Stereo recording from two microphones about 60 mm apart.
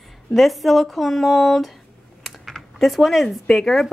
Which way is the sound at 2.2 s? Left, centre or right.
Centre.